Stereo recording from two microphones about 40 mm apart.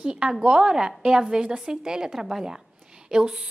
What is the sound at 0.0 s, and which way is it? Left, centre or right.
A woman's voice, centre.